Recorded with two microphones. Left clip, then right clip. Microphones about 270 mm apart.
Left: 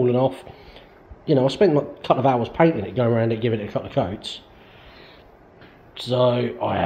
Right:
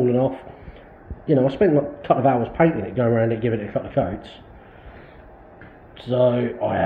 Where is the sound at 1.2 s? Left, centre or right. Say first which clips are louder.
Even; left.